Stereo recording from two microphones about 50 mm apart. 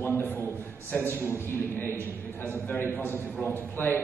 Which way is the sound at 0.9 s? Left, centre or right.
Left.